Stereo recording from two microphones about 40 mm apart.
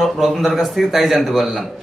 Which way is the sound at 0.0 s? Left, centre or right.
Centre.